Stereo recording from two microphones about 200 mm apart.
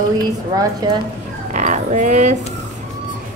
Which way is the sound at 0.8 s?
25° right (ahead or behind).